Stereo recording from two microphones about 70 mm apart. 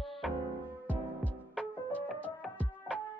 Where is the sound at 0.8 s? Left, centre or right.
Centre.